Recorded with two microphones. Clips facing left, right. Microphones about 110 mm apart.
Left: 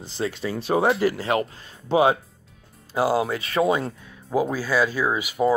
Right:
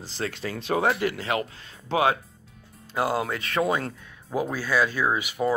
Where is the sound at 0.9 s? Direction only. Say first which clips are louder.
Left 4 dB; 35° left (ahead or behind).